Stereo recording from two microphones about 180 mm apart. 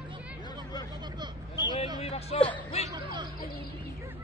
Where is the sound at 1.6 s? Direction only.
25° left (ahead or behind).